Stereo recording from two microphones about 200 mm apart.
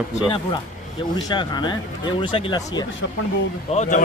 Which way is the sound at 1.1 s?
20° left (ahead or behind).